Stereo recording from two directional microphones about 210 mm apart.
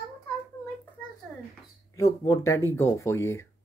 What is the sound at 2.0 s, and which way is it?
Speech, 15° left (ahead or behind).